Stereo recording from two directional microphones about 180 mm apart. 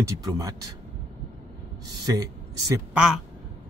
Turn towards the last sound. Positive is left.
turn(degrees=-5)  # may be behind; listen again after turning